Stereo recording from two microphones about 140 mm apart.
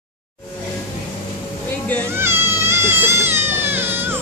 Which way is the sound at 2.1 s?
15° right (ahead or behind).